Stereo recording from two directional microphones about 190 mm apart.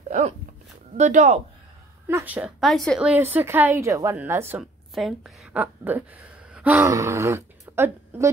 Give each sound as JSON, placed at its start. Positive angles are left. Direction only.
{"t": 0.9, "sound": "speech", "side_deg": -40}
{"t": 2.0, "sound": "a woman's voice", "side_deg": -10}